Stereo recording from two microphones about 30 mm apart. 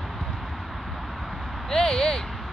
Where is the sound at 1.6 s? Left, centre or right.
Centre.